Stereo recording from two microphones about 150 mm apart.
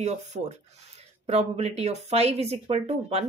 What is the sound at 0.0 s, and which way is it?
Speech, 50° right (ahead or behind).